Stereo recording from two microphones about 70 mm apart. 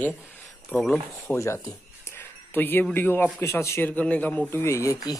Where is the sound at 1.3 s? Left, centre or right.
Left.